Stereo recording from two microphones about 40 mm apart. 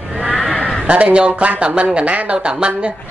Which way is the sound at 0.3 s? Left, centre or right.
Centre.